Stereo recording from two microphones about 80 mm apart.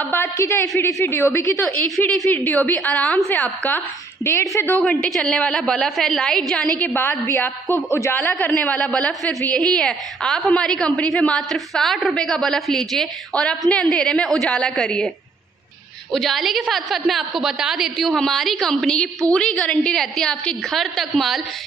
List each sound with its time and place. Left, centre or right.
0.0 s a sound: left
0.5 s a woman's voice: left
4.2 s a woman's voice: left
4.7 s a woman's voice: centre
6.8 s a woman's voice: left
7.9 s a woman's voice: left
8.2 s a woman's voice: left
8.5 s a woman's voice: centre
16.1 s a woman's voice: centre